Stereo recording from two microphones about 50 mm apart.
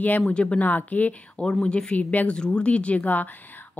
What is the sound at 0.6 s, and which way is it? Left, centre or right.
A woman's voice, left.